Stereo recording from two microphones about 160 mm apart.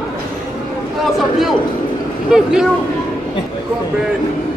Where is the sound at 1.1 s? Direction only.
Centre (ahead or behind).